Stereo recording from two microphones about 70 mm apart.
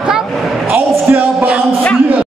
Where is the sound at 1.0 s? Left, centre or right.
Right.